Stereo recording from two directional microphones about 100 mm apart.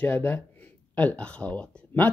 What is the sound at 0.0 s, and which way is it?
Speech, 20° left (ahead or behind).